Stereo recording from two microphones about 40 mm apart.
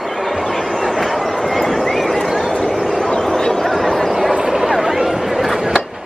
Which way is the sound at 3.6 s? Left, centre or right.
Centre.